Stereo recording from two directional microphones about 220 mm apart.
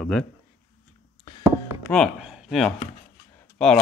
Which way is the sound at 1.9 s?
Centre (ahead or behind).